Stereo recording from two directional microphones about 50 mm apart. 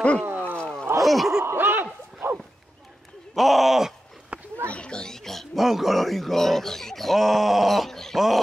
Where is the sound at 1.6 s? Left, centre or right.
Right.